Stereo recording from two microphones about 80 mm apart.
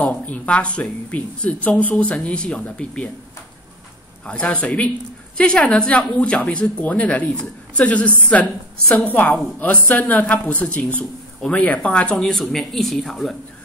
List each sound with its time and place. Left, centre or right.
0.0 s a woman's voice: centre
4.3 s a woman's voice: centre